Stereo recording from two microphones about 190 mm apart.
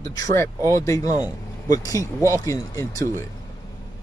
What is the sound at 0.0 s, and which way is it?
Speech, 15° left (ahead or behind).